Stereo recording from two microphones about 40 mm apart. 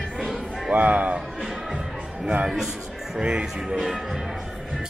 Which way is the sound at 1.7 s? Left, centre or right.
Right.